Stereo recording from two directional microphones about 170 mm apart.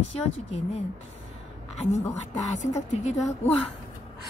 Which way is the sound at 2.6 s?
40° left (ahead or behind).